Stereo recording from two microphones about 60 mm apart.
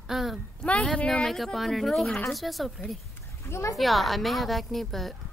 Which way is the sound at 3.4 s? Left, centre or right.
Left.